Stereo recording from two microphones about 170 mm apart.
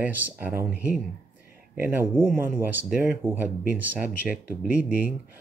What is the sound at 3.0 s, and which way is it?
Speech, 10° right (ahead or behind).